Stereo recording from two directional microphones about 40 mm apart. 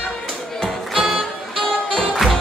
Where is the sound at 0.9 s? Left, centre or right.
Centre.